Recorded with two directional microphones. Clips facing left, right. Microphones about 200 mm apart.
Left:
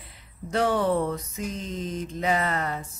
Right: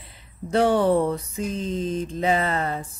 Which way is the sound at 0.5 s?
30° right (ahead or behind).